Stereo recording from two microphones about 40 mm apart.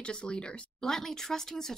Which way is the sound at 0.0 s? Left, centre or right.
Left.